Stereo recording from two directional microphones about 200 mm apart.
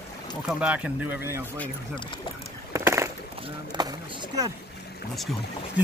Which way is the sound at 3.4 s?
25° right (ahead or behind).